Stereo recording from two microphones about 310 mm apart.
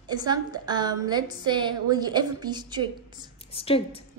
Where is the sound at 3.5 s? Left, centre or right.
Centre.